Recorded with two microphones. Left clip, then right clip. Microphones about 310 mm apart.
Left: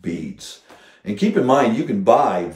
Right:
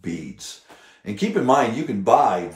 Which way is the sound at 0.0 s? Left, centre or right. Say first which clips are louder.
Left 3 dB; centre.